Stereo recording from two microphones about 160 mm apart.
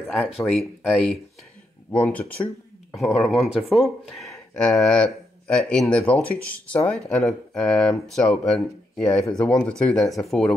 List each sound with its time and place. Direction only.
0.4 s speech: centre (ahead or behind)